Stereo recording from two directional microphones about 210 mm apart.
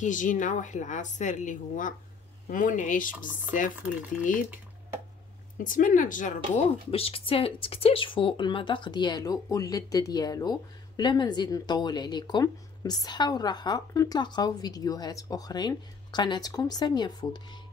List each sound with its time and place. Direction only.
0.0 s speech: 40° left (ahead or behind)
5.6 s speech: 40° left (ahead or behind); by 17.6 s 20° left (ahead or behind)